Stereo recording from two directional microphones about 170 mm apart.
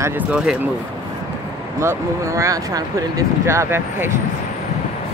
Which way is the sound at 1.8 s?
15° right (ahead or behind).